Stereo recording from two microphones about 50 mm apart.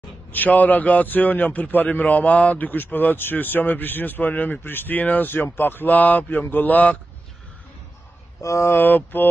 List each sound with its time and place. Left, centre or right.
0.3 s a man's voice: left
8.4 s speech: left
8.6 s a man's voice: left